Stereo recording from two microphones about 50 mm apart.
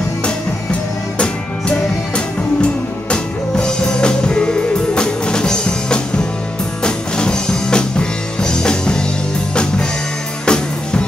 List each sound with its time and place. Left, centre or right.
1.1 s music: centre
10.4 s music: centre